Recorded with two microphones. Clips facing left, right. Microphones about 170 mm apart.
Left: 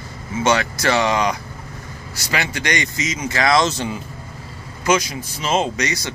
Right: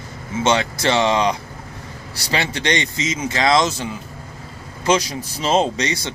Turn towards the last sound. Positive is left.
turn(degrees=-25)  # may be behind; listen again after turning